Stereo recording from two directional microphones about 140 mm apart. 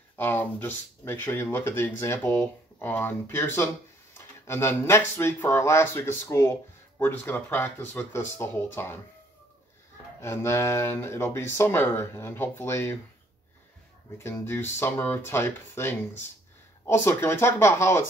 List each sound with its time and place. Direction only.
0.1 s speech: 15° left (ahead or behind)
10.2 s speech: 20° left (ahead or behind)
14.1 s speech: 20° left (ahead or behind)